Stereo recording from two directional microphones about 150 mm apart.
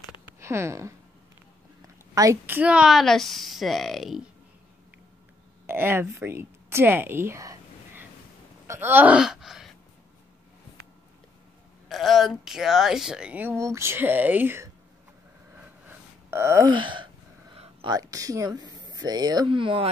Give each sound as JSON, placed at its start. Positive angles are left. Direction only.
{"t": 0.3, "sound": "speech", "side_deg": -20}
{"t": 2.4, "sound": "speech", "side_deg": -10}
{"t": 5.7, "sound": "a woman's voice", "side_deg": -15}
{"t": 8.6, "sound": "wail", "side_deg": -15}
{"t": 11.9, "sound": "speech", "side_deg": 0}
{"t": 16.3, "sound": "groan", "side_deg": -15}
{"t": 16.6, "sound": "gasp", "side_deg": -35}
{"t": 17.8, "sound": "speech", "side_deg": -25}